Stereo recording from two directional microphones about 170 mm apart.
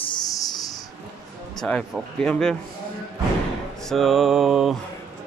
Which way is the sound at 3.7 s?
Centre (ahead or behind).